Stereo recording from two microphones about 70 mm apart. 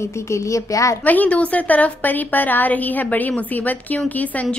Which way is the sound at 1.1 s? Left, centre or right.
Left.